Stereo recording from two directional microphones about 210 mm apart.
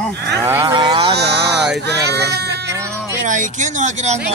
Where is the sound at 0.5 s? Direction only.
15° right (ahead or behind).